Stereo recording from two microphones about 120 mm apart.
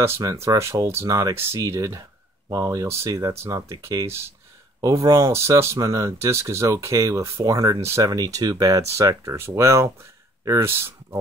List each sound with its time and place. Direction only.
0.0 s speech: 25° right (ahead or behind)